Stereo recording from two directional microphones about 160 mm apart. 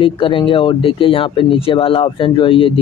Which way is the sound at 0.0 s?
30° left (ahead or behind).